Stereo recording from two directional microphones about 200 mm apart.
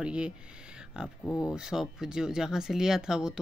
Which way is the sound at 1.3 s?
15° left (ahead or behind).